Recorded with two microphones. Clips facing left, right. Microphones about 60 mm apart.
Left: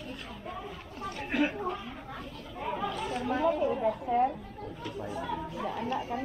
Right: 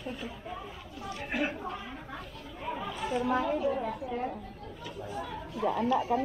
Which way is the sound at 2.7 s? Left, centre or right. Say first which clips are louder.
Even; centre.